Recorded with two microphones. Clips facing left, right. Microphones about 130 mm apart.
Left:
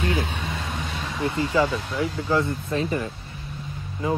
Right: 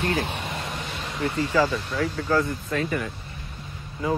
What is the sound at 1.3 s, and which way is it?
Speech, 25° left (ahead or behind).